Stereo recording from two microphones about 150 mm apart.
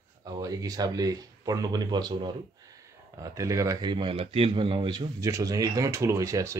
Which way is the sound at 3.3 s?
20° right (ahead or behind).